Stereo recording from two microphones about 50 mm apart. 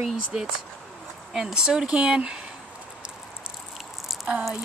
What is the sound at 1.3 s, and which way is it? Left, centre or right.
Speech, centre.